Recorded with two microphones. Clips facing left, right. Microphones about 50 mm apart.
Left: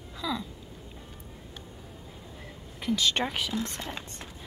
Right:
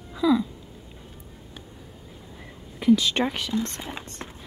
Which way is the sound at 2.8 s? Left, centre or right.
Centre.